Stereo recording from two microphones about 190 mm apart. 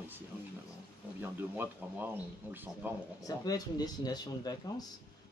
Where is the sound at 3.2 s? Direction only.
20° left (ahead or behind).